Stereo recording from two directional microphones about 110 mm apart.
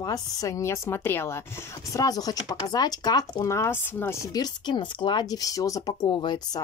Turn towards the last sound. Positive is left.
turn(degrees=45)  # may be behind; listen again after turning